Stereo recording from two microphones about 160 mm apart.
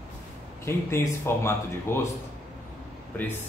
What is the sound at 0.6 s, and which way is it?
Speech, 15° left (ahead or behind).